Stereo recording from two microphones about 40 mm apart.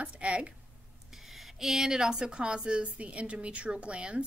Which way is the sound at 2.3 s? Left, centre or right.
Right.